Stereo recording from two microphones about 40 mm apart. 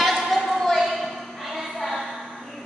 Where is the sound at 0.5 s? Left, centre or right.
Centre.